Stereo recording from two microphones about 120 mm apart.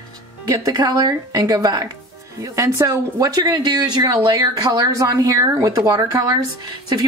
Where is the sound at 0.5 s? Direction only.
30° right (ahead or behind).